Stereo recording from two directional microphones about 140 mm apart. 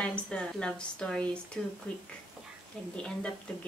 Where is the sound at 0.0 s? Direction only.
10° left (ahead or behind).